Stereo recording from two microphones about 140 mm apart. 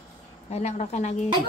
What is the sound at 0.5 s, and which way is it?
Speech, 55° left (ahead or behind).